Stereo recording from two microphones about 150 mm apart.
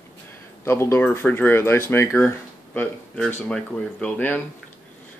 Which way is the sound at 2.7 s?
5° left (ahead or behind).